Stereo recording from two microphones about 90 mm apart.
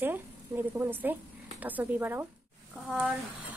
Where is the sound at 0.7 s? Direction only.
20° right (ahead or behind).